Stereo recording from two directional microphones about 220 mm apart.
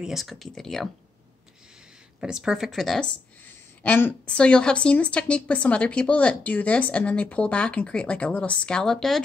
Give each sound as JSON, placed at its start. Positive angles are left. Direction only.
{"t": 0.0, "sound": "a woman's voice", "side_deg": 0}
{"t": 2.1, "sound": "a woman's voice", "side_deg": -5}